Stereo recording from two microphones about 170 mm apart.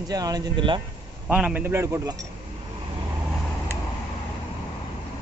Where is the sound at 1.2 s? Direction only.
5° right (ahead or behind).